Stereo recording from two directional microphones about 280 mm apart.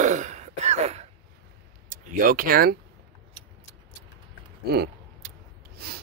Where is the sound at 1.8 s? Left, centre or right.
Right.